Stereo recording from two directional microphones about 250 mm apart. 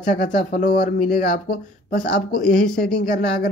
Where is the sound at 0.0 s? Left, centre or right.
Left.